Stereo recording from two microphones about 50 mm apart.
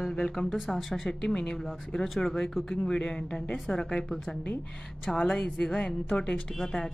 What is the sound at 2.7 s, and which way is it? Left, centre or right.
Speech, centre.